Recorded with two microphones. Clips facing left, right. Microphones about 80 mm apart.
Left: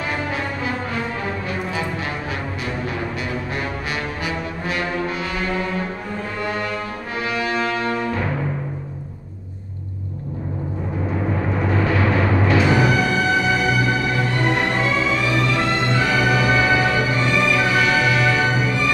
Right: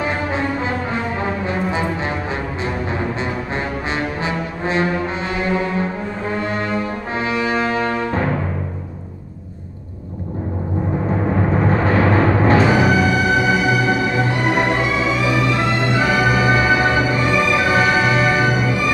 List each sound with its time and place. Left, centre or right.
0.0 s music: right
4.2 s brass instrument: right
11.6 s timpani: right
12.6 s music: centre